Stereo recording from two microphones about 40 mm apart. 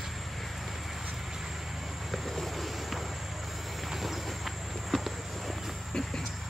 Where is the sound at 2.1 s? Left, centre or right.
Centre.